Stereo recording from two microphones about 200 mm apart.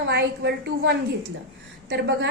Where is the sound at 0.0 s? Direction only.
55° right (ahead or behind).